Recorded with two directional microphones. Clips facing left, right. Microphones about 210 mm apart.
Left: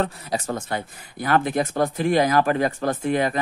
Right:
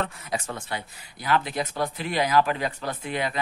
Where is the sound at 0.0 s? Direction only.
35° left (ahead or behind).